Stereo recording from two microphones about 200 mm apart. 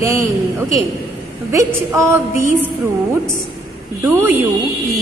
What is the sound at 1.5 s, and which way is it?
A woman's voice, 15° right (ahead or behind).